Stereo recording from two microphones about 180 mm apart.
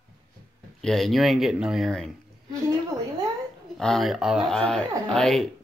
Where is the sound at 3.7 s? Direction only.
Centre (ahead or behind).